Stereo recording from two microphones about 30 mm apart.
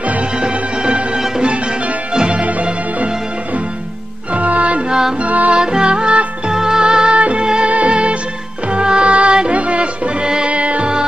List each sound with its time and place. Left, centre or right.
0.4 s music: right
4.4 s music: right
5.5 s music: right
6.5 s music: right
7.2 s music: right
10.2 s music: right
10.5 s music: right